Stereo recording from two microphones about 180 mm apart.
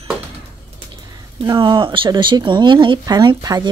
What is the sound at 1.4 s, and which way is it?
Speech, 25° right (ahead or behind).